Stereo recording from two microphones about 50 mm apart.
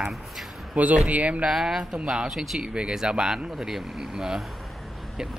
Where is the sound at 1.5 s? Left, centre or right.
Centre.